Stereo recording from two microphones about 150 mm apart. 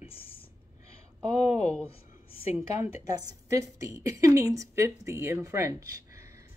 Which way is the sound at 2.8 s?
25° right (ahead or behind).